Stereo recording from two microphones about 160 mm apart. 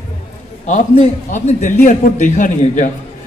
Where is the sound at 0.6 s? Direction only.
50° left (ahead or behind).